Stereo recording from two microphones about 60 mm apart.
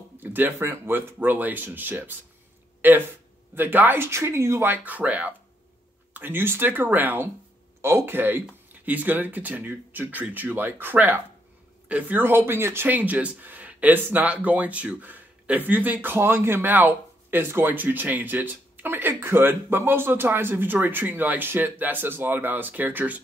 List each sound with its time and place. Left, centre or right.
0.2 s speech: right
4.6 s speech: right
7.8 s speech: right
12.9 s speech: right